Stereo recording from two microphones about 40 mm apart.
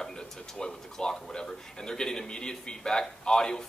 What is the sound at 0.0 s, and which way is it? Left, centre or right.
Speech, centre.